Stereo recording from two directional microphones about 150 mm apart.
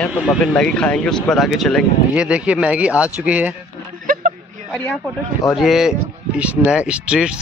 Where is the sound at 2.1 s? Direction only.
10° right (ahead or behind).